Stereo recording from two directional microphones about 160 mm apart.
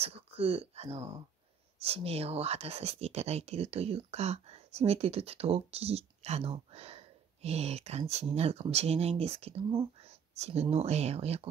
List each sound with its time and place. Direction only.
0.0 s speech: 35° right (ahead or behind)